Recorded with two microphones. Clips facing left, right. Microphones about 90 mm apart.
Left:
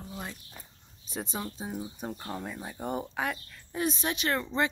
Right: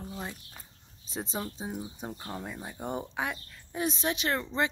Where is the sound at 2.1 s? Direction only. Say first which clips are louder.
Left 2 dB; 5° right (ahead or behind).